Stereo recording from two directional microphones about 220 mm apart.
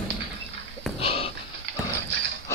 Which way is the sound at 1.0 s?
25° left (ahead or behind).